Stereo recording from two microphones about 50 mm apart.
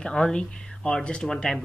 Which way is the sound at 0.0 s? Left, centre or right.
Centre.